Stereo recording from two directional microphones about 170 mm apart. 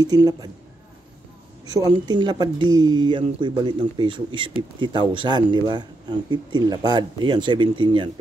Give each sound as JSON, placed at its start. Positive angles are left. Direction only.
{"t": 0.0, "sound": "speech", "side_deg": -25}
{"t": 1.7, "sound": "speech", "side_deg": -25}